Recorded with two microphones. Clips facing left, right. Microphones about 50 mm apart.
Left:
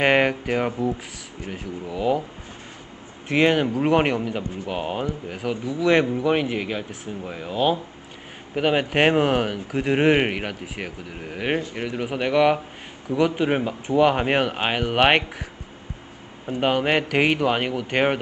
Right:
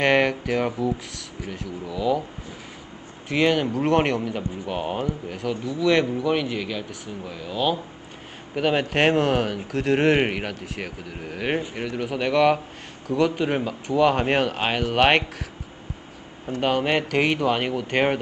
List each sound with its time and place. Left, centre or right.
0.0 s speech: centre
1.9 s a man's voice: left
3.3 s speech: left
4.3 s a man's voice: left
5.7 s speech: left
8.5 s speech: centre
16.4 s speech: centre